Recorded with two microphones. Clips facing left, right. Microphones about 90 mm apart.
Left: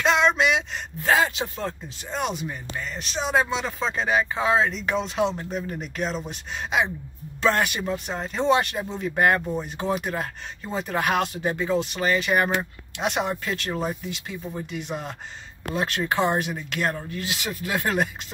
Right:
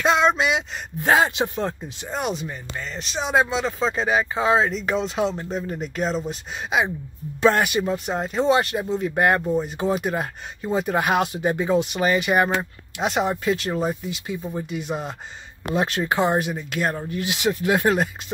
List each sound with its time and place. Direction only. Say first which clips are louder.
0.0 s a sound: right 1 dB; 10° right (ahead or behind)
1.0 s speech: right 3 dB; 25° right (ahead or behind)
2.0 s speech: right 1 dB; 5° right (ahead or behind)
7.4 s speech: right 4 dB; 10° right (ahead or behind)
13.0 s speech: right 4 dB; 5° right (ahead or behind); by 17.9 s 20° right (ahead or behind)